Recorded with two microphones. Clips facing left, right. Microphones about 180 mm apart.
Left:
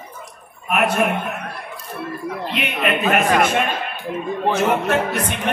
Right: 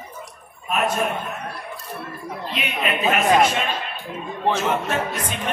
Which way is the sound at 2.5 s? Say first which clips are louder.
Left 3 dB; 55° left (ahead or behind).